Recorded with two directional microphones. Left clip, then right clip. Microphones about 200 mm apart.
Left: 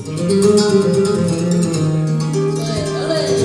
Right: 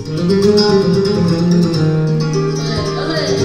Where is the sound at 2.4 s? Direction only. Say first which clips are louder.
Right 1 dB; 30° right (ahead or behind).